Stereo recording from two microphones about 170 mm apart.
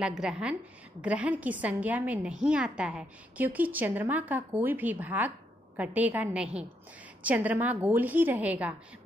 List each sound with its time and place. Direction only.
0.0 s a woman's voice: 5° right (ahead or behind)